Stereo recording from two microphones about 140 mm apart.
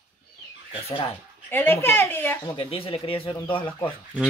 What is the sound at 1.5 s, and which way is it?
Speech, 15° left (ahead or behind).